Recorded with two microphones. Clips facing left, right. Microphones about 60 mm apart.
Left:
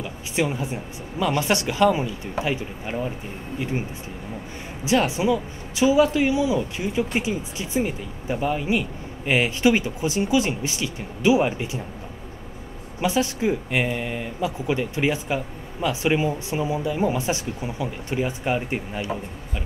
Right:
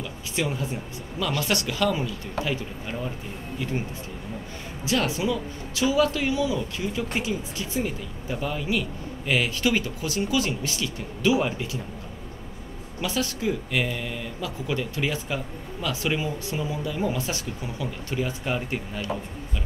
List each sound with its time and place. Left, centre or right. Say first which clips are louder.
0.0 s speech: left 4 dB; left
4.8 s speech: left 4 dB; left
13.0 s speech: left 5 dB; left